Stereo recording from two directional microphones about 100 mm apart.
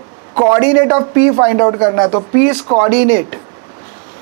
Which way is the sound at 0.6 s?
30° right (ahead or behind).